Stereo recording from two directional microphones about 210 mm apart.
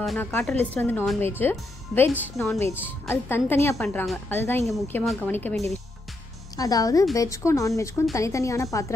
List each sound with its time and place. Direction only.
0.0 s a woman's voice: centre (ahead or behind)